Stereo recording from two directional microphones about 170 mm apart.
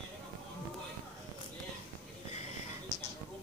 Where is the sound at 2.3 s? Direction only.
40° left (ahead or behind).